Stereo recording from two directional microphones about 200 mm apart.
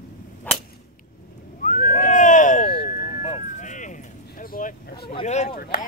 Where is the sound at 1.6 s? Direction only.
40° left (ahead or behind).